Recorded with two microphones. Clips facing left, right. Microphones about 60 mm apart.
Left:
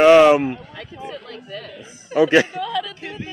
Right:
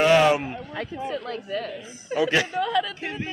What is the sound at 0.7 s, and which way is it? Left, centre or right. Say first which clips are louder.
Speech: right 4 dB; right.